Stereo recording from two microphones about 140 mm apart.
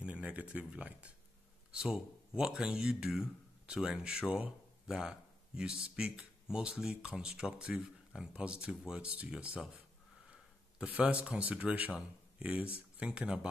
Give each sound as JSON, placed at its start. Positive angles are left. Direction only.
{"t": 0.0, "sound": "speech", "side_deg": -10}
{"t": 10.8, "sound": "speech", "side_deg": -10}